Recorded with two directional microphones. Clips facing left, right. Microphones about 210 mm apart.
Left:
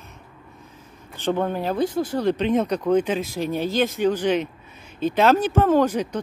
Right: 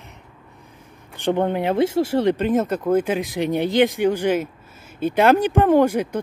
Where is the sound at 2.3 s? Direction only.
5° right (ahead or behind).